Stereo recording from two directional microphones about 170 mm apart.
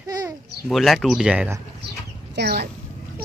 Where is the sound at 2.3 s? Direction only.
70° right (ahead or behind).